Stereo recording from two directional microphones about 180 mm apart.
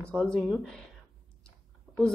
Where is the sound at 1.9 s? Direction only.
Centre (ahead or behind).